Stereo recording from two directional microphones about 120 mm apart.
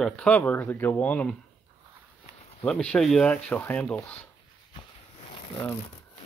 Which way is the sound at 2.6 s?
10° left (ahead or behind).